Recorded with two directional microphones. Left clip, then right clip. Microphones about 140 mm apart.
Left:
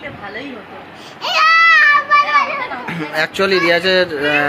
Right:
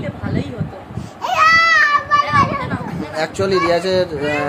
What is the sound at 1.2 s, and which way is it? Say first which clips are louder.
Baby cry: left 1 dB; 50° right (ahead or behind).